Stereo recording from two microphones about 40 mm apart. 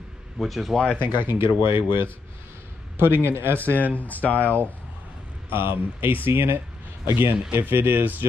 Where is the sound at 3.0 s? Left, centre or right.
Right.